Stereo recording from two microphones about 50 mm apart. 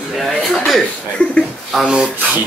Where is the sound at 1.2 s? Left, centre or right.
Left.